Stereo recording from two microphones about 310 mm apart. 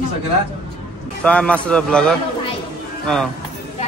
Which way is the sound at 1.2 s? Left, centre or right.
Centre.